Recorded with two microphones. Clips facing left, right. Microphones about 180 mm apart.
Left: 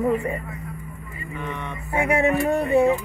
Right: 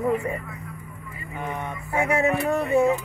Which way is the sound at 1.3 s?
80° left.